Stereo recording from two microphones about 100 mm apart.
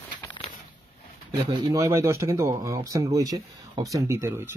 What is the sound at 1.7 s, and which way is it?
Speech, 30° right (ahead or behind).